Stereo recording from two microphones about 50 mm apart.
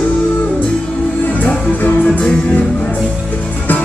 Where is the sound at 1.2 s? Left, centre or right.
Left.